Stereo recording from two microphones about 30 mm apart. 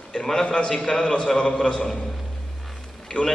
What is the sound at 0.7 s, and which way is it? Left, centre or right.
A man's voice, left.